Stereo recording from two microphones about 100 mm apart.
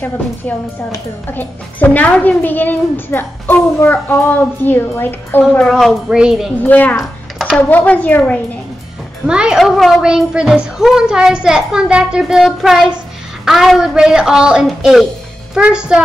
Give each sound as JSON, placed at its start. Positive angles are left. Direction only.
{"t": 0.5, "sound": "a child's voice", "side_deg": 15}
{"t": 5.7, "sound": "a woman's voice", "side_deg": 0}
{"t": 6.6, "sound": "speech", "side_deg": 15}
{"t": 7.0, "sound": "a sound", "side_deg": 0}
{"t": 7.7, "sound": "speech", "side_deg": 15}
{"t": 9.2, "sound": "a woman's voice", "side_deg": -10}